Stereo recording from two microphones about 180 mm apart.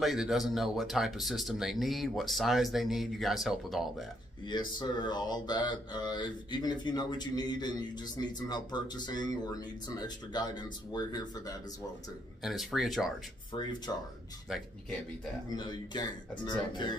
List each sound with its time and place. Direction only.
0.0 s speech: centre (ahead or behind)
4.5 s speech: 25° left (ahead or behind)
12.4 s speech: centre (ahead or behind)
13.5 s speech: 25° left (ahead or behind)
14.5 s speech: 5° right (ahead or behind)
15.5 s speech: 25° left (ahead or behind)